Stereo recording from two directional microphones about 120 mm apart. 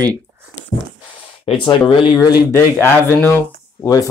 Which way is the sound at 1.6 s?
45° left (ahead or behind).